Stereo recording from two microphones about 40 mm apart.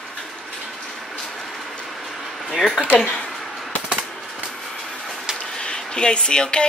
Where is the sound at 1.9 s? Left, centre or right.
Centre.